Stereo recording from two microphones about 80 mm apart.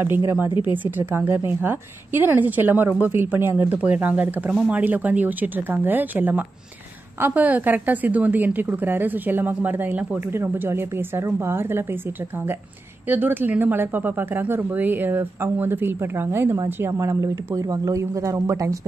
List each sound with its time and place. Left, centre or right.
0.8 s speech: right
13.1 s speech: right